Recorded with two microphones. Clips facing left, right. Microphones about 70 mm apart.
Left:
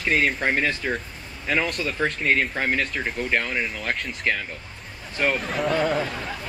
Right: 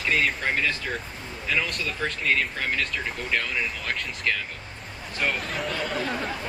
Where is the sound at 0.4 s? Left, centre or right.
Left.